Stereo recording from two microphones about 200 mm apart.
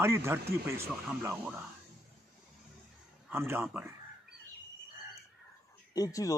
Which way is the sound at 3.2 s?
10° right (ahead or behind).